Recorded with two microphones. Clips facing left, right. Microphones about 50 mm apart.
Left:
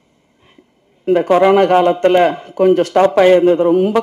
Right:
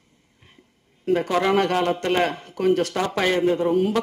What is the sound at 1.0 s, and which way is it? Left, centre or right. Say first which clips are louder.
A man's voice: left 10 dB; left.